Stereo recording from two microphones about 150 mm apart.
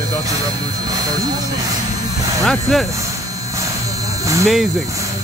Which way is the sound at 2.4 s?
Centre (ahead or behind).